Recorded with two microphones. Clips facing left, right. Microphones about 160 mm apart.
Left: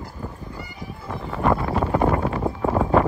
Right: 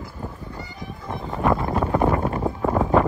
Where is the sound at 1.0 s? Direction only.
20° right (ahead or behind).